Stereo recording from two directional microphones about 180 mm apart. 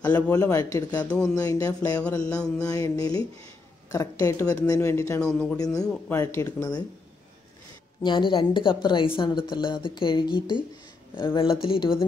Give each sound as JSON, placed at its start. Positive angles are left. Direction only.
{"t": 0.1, "sound": "a woman's voice", "side_deg": 10}
{"t": 2.0, "sound": "speech", "side_deg": 5}
{"t": 2.7, "sound": "a woman's voice", "side_deg": 20}
{"t": 5.2, "sound": "speech", "side_deg": 5}
{"t": 5.6, "sound": "a woman's voice", "side_deg": 20}
{"t": 8.0, "sound": "a woman's voice", "side_deg": 25}